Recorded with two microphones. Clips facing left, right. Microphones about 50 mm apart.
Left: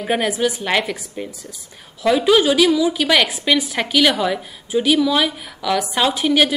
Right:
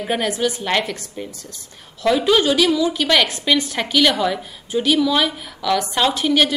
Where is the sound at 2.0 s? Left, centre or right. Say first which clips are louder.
Left 2 dB; centre.